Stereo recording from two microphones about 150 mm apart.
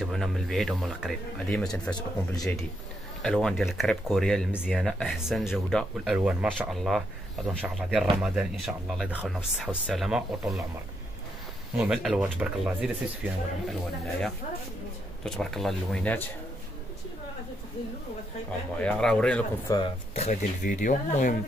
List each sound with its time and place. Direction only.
0.0 s speech: centre (ahead or behind)
3.2 s speech: centre (ahead or behind)
11.7 s speech: 5° right (ahead or behind)
18.8 s speech: 5° left (ahead or behind)
19.7 s speech: 25° left (ahead or behind)
20.2 s speech: 55° left (ahead or behind)